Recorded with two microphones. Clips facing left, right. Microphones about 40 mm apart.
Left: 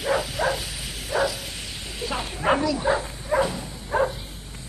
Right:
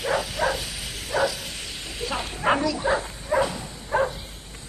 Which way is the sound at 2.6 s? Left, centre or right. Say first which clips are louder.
Left 1 dB; left.